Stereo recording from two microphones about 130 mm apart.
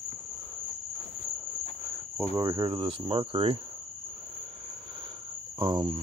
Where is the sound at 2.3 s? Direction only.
30° right (ahead or behind); by 3.5 s 45° right (ahead or behind).